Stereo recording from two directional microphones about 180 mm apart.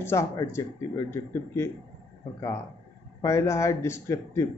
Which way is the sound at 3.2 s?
15° left (ahead or behind).